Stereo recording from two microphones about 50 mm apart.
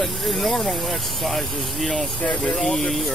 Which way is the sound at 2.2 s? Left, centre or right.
Left.